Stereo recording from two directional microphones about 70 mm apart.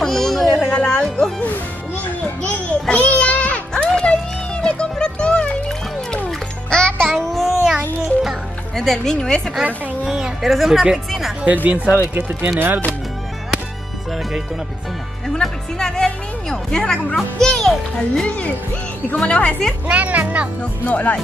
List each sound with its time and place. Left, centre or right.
0.0 s a sound: centre
0.7 s music: centre
2.4 s music: centre
10.0 s a sound: centre
10.5 s speech: centre
11.4 s speech: right
15.4 s a woman's voice: centre
19.9 s music: right
20.8 s speech: left